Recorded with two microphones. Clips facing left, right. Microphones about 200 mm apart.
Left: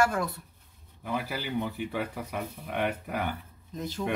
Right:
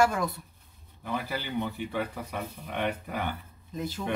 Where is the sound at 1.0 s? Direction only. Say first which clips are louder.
Even; 10° left (ahead or behind).